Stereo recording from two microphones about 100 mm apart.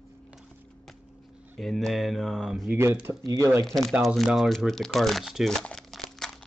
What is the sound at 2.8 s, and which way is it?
Speech, 20° right (ahead or behind).